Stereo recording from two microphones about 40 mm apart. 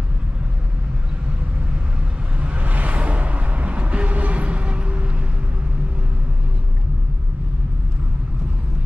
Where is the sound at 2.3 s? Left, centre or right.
Right.